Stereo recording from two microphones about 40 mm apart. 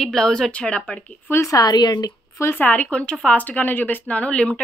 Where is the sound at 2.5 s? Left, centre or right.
Left.